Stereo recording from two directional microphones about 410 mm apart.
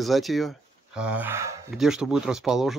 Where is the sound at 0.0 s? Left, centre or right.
Centre.